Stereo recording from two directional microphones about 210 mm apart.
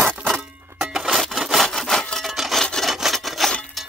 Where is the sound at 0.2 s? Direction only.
Centre (ahead or behind).